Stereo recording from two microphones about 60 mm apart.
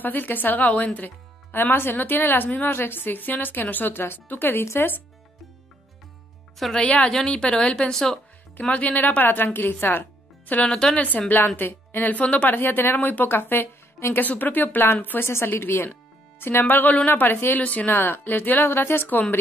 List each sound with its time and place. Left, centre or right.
0.0 s speech: left
6.8 s a woman's voice: centre
8.5 s a woman's voice: left
10.7 s a woman's voice: centre
11.0 s speech: left
12.5 s speech: left
14.2 s speech: left
15.2 s speech: left